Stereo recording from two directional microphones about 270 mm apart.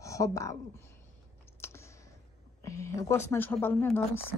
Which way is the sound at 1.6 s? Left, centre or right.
Centre.